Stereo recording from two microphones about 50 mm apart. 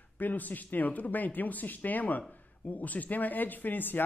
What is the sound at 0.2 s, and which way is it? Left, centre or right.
Speech, left.